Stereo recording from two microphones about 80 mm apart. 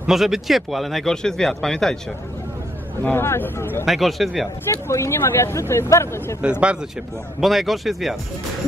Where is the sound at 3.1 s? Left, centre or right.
Left.